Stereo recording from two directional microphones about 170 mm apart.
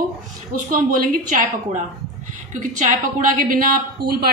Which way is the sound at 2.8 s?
50° right (ahead or behind).